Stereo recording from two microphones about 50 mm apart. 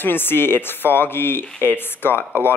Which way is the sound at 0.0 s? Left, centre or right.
Left.